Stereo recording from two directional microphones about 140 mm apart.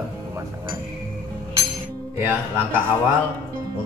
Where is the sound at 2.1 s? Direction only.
15° right (ahead or behind).